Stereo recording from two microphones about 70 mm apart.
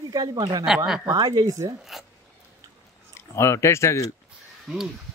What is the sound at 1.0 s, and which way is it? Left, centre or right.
Speech, right.